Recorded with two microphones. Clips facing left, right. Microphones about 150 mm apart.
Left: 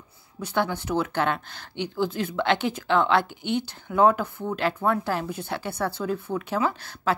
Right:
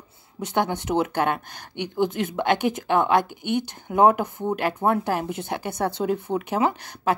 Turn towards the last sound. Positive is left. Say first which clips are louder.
# right 3 dB
turn(degrees=-20)  # may be behind; listen again after turning